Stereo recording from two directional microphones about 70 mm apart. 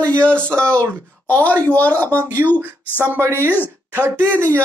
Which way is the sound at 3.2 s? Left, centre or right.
Right.